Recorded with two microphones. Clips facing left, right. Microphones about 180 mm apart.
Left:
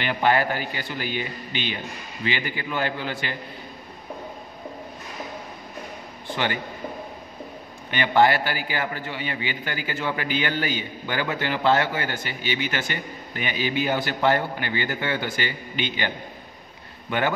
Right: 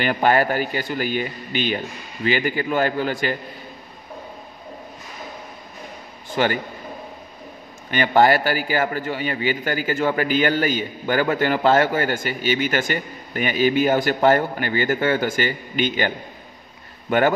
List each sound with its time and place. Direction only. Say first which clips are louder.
0.0 s a man's voice: right 3 dB; 45° right (ahead or behind)
6.2 s a man's voice: right 6 dB; 45° right (ahead or behind)
7.9 s a man's voice: right 3 dB; 45° right (ahead or behind)
17.1 s a man's voice: right 7 dB; 45° right (ahead or behind)